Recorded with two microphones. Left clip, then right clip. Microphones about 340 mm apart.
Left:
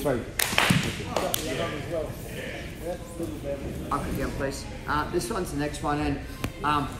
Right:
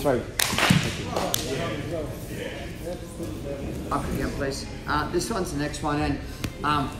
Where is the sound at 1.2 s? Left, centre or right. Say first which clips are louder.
Even; left.